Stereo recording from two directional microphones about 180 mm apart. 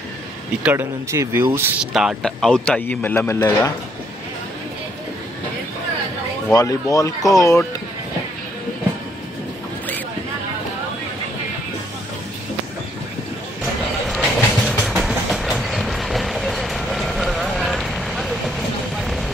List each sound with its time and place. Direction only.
0.7 s speech: 15° right (ahead or behind); by 3.7 s 20° left (ahead or behind)
6.5 s speech: 20° left (ahead or behind)
14.0 s train: centre (ahead or behind)
18.9 s vehicle: centre (ahead or behind)